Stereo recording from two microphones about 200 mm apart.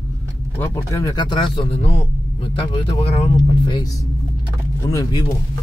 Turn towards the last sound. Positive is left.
turn(degrees=20)  # may be behind; listen again after turning